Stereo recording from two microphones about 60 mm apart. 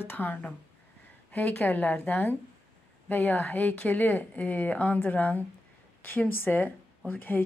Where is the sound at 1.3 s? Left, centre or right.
Left.